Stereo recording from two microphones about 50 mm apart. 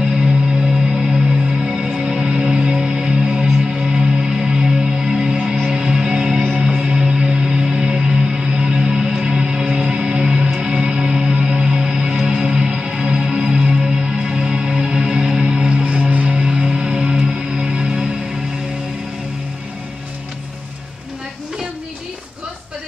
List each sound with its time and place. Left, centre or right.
1.1 s music: centre
16.4 s music: centre